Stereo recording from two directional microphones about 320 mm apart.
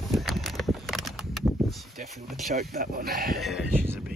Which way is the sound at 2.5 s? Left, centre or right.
Right.